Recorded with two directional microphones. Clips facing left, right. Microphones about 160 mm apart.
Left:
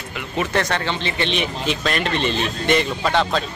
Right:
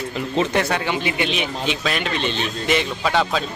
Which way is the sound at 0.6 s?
10° right (ahead or behind).